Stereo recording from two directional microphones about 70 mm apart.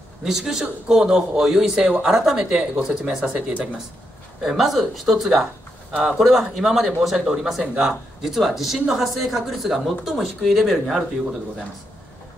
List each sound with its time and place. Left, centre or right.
0.2 s speech: centre
2.0 s speech: centre
4.4 s speech: centre